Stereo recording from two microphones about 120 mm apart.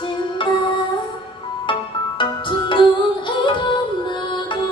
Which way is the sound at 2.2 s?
40° left (ahead or behind).